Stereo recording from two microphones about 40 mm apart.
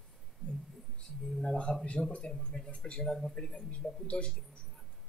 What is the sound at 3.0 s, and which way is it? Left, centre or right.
Speech, centre.